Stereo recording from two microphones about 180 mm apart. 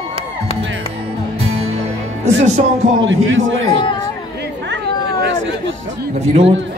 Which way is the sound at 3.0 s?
90° right.